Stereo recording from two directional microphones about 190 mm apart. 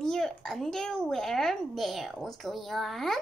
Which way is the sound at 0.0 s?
Centre (ahead or behind).